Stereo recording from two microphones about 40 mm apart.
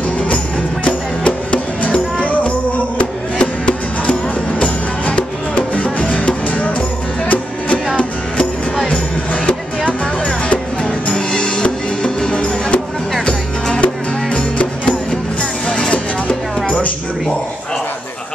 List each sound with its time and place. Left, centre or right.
0.8 s music: left
5.0 s music: left
14.3 s music: left